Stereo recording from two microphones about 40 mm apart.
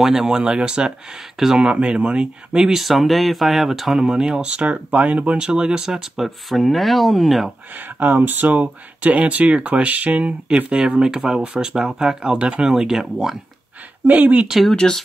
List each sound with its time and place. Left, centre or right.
0.0 s speech: centre
1.7 s speech: right
2.7 s speech: centre
4.4 s speech: right
5.6 s speech: right
6.1 s speech: centre
7.7 s speech: right; by 13.0 s centre
14.0 s speech: right
14.8 s speech: centre